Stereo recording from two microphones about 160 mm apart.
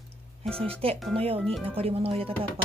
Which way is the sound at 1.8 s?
35° right (ahead or behind).